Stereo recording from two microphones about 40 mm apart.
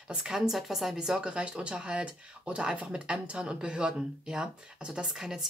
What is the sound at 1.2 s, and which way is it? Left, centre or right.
Speech, right.